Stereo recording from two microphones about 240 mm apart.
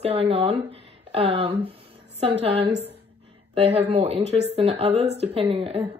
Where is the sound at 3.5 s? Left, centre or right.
Right.